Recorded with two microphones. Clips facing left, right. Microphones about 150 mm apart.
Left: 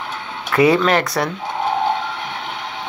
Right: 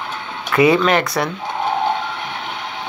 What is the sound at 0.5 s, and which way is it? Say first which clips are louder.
Speech: even; 35° left (ahead or behind).